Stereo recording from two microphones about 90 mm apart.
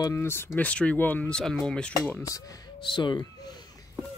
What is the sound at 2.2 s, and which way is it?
Speech, 40° left (ahead or behind).